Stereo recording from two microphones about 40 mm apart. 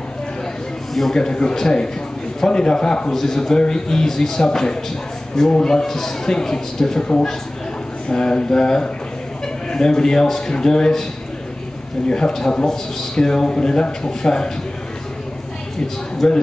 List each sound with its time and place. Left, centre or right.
1.1 s speech: centre
8.1 s speech: left
12.1 s speech: centre
16.2 s speech: centre